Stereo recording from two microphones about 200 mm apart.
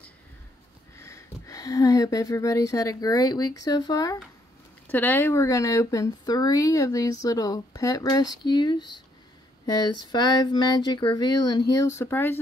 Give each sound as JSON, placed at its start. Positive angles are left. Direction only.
{"t": 0.9, "sound": "speech", "side_deg": 15}